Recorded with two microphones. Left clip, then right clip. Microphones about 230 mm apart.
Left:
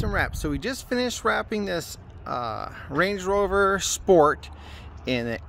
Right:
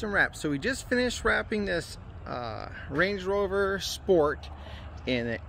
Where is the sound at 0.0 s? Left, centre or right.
Centre.